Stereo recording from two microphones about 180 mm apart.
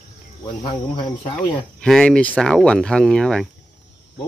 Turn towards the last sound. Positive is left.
turn(degrees=5)  # may be behind; listen again after turning